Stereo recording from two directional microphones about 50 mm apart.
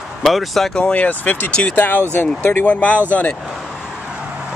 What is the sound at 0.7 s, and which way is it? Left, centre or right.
Speech, left.